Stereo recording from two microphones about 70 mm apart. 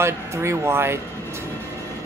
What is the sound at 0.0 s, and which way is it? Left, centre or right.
Speech, right.